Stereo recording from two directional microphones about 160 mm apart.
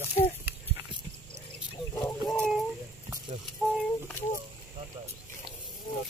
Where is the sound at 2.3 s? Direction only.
Centre (ahead or behind).